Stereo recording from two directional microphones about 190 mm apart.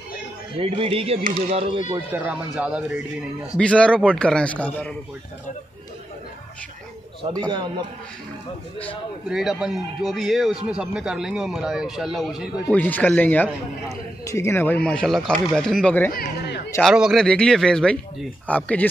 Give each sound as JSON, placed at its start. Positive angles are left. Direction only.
{"t": 0.6, "sound": "a man's voice", "side_deg": -30}
{"t": 2.1, "sound": "speech", "side_deg": -5}
{"t": 3.5, "sound": "speech", "side_deg": 5}
{"t": 7.5, "sound": "speech", "side_deg": -25}
{"t": 9.3, "sound": "speech", "side_deg": 0}
{"t": 12.7, "sound": "speech", "side_deg": 10}
{"t": 16.1, "sound": "speech", "side_deg": 55}
{"t": 16.8, "sound": "speech", "side_deg": 0}